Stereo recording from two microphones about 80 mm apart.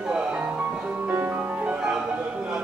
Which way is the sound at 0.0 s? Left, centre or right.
Centre.